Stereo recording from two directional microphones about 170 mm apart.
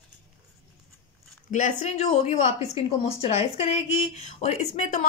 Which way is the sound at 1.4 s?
45° left (ahead or behind).